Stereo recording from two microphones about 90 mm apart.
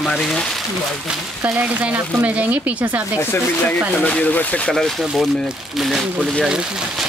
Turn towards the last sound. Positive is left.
turn(degrees=0)  # may be behind; listen again after turning